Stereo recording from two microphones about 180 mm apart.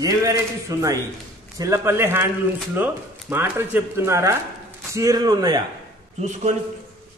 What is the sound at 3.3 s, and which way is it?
A man's voice, 15° right (ahead or behind).